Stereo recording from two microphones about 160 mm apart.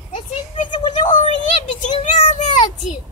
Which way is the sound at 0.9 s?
50° left (ahead or behind).